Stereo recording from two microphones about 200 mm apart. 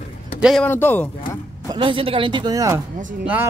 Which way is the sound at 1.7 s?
25° right (ahead or behind).